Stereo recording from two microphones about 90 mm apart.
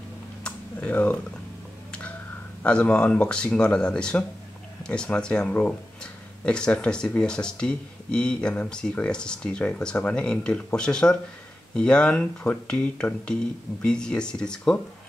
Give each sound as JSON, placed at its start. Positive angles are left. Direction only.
{"t": 0.7, "sound": "speech", "side_deg": 15}
{"t": 2.6, "sound": "speech", "side_deg": 10}